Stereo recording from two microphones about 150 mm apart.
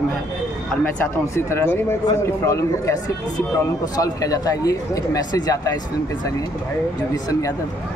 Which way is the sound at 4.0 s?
25° left (ahead or behind).